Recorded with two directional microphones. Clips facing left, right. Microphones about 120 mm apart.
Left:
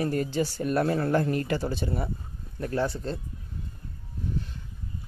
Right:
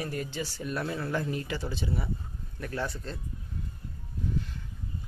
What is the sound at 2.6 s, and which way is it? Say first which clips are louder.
Speech: left 6 dB; 35° left (ahead or behind).